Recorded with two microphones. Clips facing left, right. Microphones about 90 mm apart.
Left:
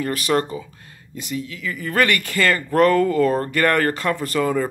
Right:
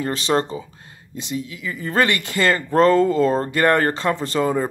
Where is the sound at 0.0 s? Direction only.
25° right (ahead or behind).